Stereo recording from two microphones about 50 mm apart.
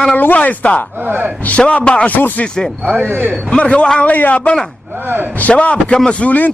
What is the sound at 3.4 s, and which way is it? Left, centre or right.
A man's voice, left.